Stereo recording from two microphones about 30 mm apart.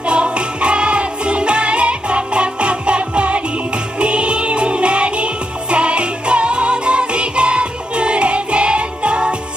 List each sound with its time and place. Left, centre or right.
0.1 s music: right